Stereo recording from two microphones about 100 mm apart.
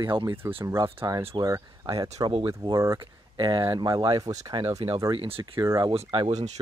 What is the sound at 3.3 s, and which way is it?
Speech, 55° right (ahead or behind).